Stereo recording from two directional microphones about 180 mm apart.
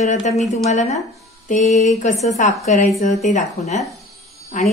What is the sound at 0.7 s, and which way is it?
A woman's voice, 40° left (ahead or behind).